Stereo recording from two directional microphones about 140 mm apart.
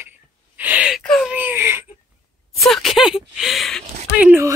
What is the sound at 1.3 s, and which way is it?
Baby cry, 15° right (ahead or behind).